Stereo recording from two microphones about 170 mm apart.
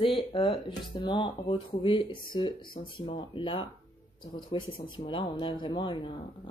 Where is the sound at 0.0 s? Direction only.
30° left (ahead or behind).